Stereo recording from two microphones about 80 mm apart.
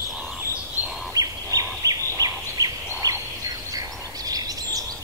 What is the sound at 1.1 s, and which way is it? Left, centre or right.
Fowl, right.